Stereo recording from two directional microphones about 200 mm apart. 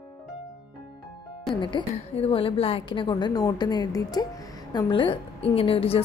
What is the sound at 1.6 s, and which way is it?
A woman's voice, 25° left (ahead or behind).